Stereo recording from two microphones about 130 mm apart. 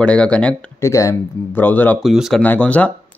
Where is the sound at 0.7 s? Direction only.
20° left (ahead or behind).